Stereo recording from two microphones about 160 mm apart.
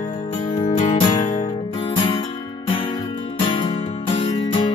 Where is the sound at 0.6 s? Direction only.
50° left (ahead or behind).